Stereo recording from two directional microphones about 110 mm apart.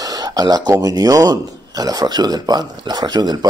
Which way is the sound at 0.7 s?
35° right (ahead or behind).